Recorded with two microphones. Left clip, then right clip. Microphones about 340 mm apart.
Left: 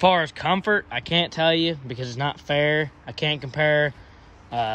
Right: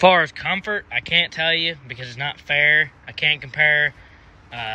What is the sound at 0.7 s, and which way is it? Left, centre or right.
Speech, right.